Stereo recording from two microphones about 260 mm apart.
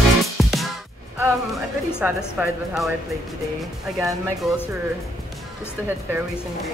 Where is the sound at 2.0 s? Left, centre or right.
Centre.